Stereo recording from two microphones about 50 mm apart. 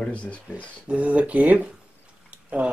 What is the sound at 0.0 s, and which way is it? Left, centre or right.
Speech, left.